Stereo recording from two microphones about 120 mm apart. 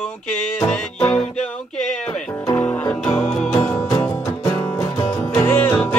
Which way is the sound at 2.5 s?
15° left (ahead or behind).